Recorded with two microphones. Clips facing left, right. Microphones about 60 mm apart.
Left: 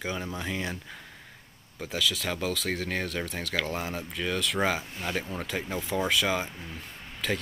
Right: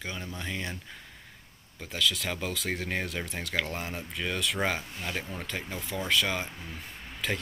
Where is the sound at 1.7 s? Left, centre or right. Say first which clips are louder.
Left 1 dB; centre.